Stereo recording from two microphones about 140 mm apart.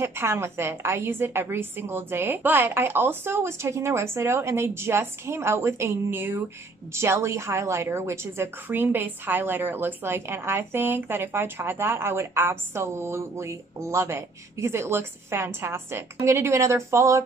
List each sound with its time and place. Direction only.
0.0 s a woman's voice: 20° right (ahead or behind)